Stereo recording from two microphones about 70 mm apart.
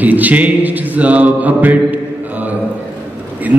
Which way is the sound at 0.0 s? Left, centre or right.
Right.